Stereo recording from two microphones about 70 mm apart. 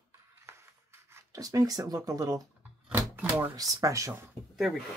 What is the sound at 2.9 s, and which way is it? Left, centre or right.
Door, right.